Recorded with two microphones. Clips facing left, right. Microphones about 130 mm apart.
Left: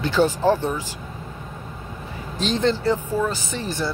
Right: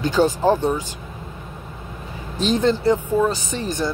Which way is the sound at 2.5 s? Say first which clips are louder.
Right 3 dB; 10° right (ahead or behind).